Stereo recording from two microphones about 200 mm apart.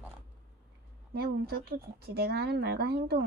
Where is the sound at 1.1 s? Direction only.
50° right (ahead or behind).